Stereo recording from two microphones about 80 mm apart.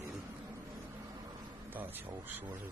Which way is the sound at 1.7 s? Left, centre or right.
Right.